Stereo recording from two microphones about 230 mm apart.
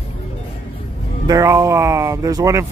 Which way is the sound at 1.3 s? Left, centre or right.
Centre.